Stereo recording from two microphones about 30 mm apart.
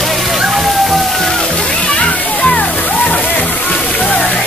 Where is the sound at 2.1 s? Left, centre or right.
Left.